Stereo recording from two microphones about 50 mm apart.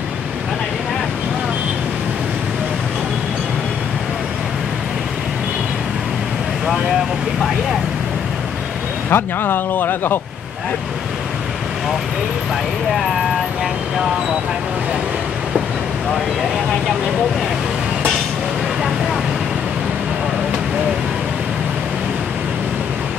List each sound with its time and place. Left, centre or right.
9.1 s speech: left